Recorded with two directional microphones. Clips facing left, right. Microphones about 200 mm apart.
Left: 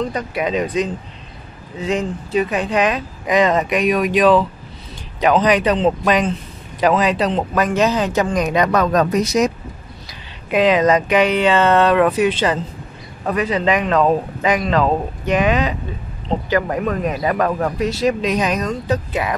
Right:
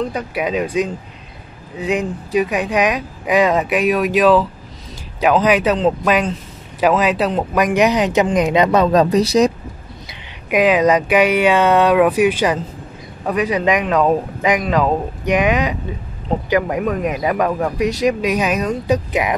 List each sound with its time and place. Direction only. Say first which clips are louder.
0.0 s speech: even; 10° right (ahead or behind); by 9.5 s 35° right (ahead or behind)
10.5 s speech: right 1 dB; 10° right (ahead or behind)
17.7 s speech: right 1 dB; 15° right (ahead or behind)